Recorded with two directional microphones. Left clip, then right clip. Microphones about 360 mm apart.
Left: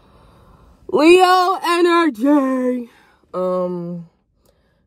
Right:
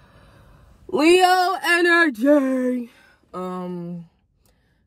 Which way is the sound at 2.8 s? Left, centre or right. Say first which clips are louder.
Left 2 dB; centre.